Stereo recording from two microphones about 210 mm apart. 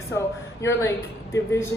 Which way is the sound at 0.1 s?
15° left (ahead or behind).